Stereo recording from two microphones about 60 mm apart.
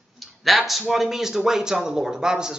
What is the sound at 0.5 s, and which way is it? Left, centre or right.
A man's voice, centre.